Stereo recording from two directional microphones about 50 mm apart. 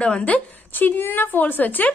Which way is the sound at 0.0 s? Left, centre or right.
Left.